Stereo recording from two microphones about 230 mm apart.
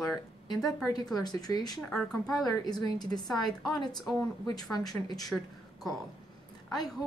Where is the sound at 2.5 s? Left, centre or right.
Centre.